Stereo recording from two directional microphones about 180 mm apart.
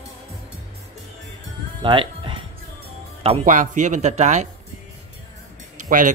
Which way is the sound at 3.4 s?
45° right (ahead or behind).